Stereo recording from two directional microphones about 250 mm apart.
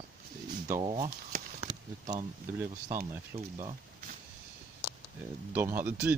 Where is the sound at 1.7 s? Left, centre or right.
Centre.